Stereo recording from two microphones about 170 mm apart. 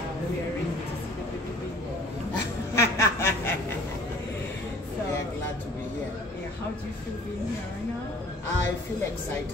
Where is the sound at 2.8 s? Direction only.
15° left (ahead or behind).